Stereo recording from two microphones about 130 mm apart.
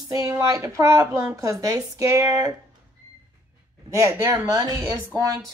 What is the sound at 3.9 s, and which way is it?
Speech, 25° right (ahead or behind).